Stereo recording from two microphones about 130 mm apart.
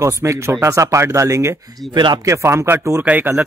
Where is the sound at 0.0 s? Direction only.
20° right (ahead or behind).